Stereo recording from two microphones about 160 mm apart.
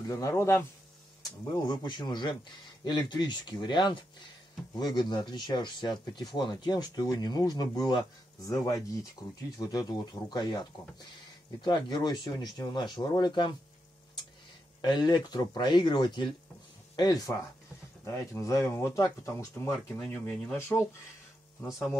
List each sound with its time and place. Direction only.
0.0 s speech: 20° left (ahead or behind)
11.6 s speech: 25° left (ahead or behind)
14.8 s speech: 25° left (ahead or behind)
20.0 s speech: 5° left (ahead or behind)
20.5 s speech: 15° left (ahead or behind)